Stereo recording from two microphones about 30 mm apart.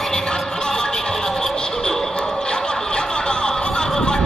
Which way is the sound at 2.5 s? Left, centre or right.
Left.